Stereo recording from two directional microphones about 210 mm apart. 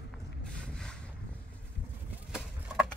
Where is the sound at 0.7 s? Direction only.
5° left (ahead or behind).